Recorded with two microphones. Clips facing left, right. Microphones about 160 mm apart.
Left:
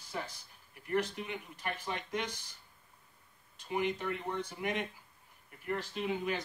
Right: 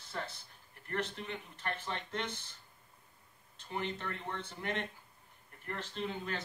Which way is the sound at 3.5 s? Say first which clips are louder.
Left 5 dB; 10° left (ahead or behind).